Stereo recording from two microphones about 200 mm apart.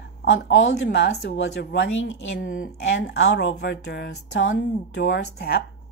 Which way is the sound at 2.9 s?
65° left (ahead or behind).